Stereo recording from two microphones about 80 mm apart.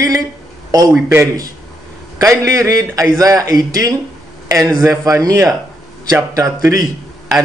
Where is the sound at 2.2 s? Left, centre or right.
Right.